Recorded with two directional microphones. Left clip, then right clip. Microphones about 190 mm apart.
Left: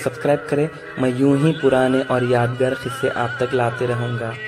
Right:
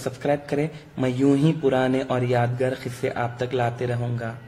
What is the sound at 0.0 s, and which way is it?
A man's voice, 25° left (ahead or behind).